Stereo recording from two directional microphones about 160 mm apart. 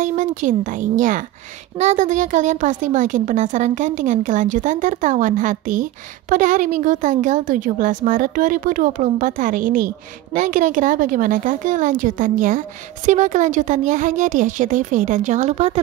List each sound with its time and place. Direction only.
0.0 s a woman's voice: 50° right (ahead or behind)